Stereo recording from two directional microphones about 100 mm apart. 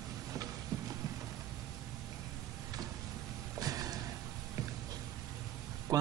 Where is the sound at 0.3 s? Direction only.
35° right (ahead or behind).